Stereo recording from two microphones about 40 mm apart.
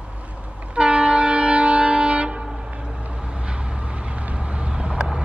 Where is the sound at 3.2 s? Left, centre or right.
Right.